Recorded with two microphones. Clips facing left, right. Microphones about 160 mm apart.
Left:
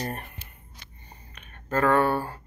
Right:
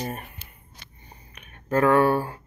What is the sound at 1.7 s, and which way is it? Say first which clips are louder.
Speech: right 3 dB; 10° right (ahead or behind).